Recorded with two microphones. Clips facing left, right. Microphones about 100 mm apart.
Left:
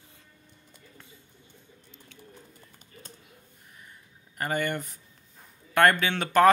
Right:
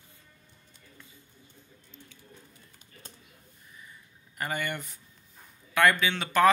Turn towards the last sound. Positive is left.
turn(degrees=50)  # may be behind; listen again after turning